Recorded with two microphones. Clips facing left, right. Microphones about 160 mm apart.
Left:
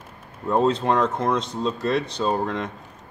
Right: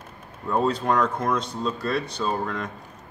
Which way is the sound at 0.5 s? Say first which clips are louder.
Left 3 dB; 25° left (ahead or behind).